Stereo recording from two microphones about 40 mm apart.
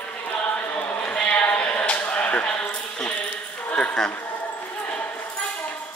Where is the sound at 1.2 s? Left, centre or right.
Left.